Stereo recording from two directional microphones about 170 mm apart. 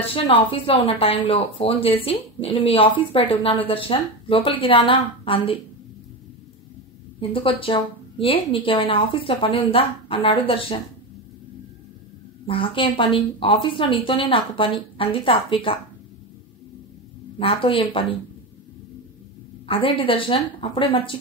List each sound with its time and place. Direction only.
0.0 s a woman's voice: 35° left (ahead or behind)
7.2 s a woman's voice: 30° left (ahead or behind)
12.4 s a woman's voice: 30° left (ahead or behind)
17.4 s a woman's voice: 30° left (ahead or behind)
19.7 s a woman's voice: 30° left (ahead or behind)